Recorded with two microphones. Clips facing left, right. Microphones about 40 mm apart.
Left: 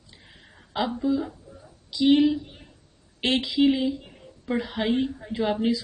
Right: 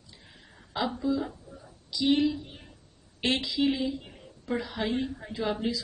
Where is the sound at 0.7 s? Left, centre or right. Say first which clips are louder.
Left 4 dB; left.